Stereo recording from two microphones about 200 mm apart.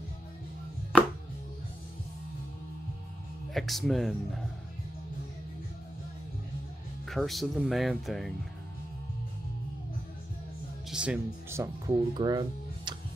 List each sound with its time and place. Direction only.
3.5 s speech: centre (ahead or behind)
7.1 s speech: centre (ahead or behind)
10.9 s speech: 5° right (ahead or behind); by 12.9 s 25° right (ahead or behind)